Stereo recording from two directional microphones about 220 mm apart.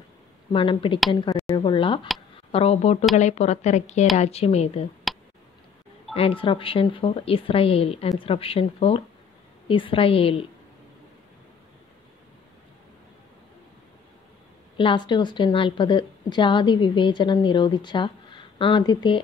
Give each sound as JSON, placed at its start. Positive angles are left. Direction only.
{"t": 0.5, "sound": "a woman's voice", "side_deg": 20}
{"t": 1.5, "sound": "a sound", "side_deg": 20}
{"t": 2.5, "sound": "a woman's voice", "side_deg": 25}
{"t": 5.1, "sound": "clicking", "side_deg": 0}
{"t": 6.1, "sound": "a woman's voice", "side_deg": 25}
{"t": 14.8, "sound": "a woman's voice", "side_deg": 20}